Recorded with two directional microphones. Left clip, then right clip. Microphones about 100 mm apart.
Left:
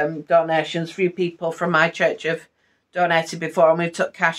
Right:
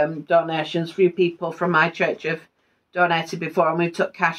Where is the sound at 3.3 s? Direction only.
25° left (ahead or behind).